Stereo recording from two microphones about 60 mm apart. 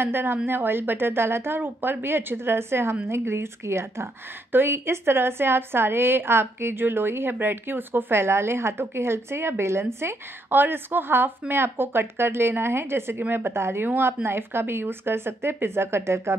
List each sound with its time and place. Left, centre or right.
0.0 s a woman's voice: right
4.5 s a woman's voice: right
8.2 s a woman's voice: right